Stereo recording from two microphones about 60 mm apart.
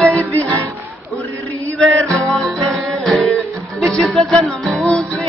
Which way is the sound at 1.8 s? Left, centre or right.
Centre.